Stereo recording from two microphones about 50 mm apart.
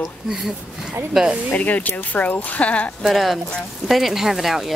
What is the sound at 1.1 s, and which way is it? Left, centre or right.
Speech, centre.